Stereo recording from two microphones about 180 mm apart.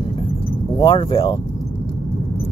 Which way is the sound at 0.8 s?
30° left (ahead or behind).